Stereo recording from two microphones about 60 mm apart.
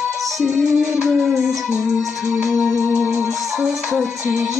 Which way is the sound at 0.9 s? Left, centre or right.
Centre.